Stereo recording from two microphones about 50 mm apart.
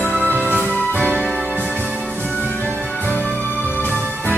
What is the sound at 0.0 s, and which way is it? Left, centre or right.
Music, left.